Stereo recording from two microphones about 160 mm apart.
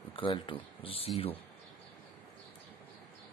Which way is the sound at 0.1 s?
30° left (ahead or behind).